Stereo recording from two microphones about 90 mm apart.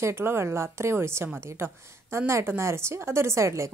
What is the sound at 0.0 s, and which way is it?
Speech, 30° right (ahead or behind).